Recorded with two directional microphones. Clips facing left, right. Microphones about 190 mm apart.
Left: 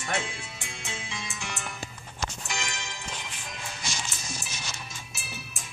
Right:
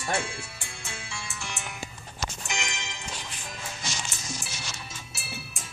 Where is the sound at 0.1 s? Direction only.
20° left (ahead or behind).